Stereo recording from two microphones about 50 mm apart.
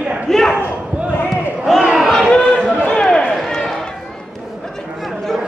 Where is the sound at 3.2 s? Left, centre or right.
Centre.